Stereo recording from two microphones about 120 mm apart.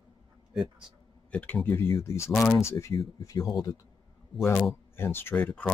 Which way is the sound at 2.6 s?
25° left (ahead or behind).